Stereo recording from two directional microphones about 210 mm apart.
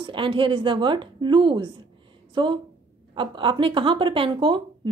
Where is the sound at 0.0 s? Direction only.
25° right (ahead or behind).